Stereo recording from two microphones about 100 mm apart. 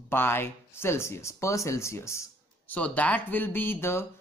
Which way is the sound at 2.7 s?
15° left (ahead or behind).